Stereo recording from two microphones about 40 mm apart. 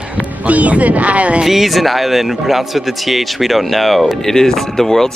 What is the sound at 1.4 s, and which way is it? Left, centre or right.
Speech, centre.